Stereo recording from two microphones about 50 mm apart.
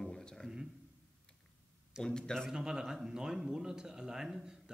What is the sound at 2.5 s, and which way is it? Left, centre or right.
Speech, centre.